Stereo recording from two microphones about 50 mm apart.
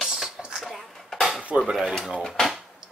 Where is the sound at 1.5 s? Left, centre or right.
Right.